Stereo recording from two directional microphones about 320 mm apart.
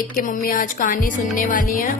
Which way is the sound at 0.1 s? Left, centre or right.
Left.